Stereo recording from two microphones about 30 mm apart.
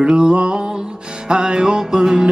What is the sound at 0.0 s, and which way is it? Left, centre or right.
Music, right.